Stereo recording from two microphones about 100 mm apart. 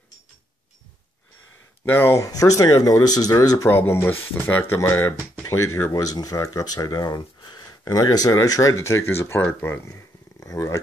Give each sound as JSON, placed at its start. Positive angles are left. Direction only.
{"t": 1.9, "sound": "speech", "side_deg": 25}
{"t": 2.2, "sound": "speech", "side_deg": 35}
{"t": 3.7, "sound": "speech", "side_deg": 25}
{"t": 10.4, "sound": "speech", "side_deg": 35}